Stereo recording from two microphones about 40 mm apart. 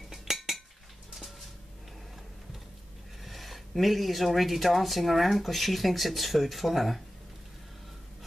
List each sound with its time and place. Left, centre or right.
0.1 s cutlery: centre
3.3 s speech: centre